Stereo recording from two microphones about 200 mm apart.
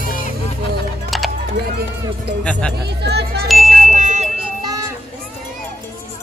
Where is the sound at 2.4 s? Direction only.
5° left (ahead or behind).